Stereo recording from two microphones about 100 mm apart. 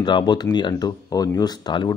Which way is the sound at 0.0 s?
50° left (ahead or behind).